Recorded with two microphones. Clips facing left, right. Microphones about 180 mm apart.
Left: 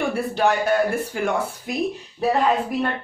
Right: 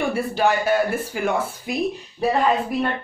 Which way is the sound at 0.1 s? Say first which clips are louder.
Even; centre (ahead or behind).